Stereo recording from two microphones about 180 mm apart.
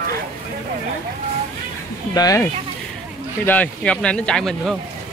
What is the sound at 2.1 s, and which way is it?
Speech, 20° left (ahead or behind).